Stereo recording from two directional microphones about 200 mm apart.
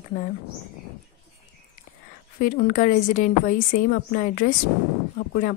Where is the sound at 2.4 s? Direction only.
45° left (ahead or behind).